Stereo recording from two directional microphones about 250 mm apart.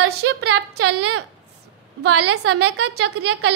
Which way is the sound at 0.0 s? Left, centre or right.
Right.